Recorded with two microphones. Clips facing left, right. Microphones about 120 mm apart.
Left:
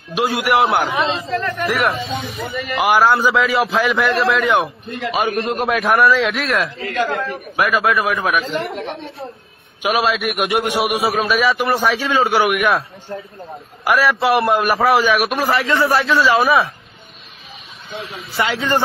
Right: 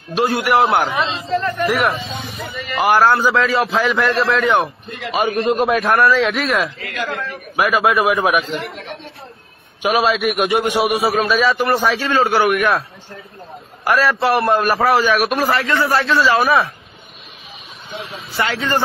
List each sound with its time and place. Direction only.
0.1 s a man's voice: centre (ahead or behind)
6.8 s a man's voice: 30° left (ahead or behind)
7.2 s a man's voice: centre (ahead or behind)
9.8 s a man's voice: centre (ahead or behind)
15.6 s a man's voice: 25° left (ahead or behind)
16.0 s a man's voice: centre (ahead or behind)
18.4 s a man's voice: 20° left (ahead or behind)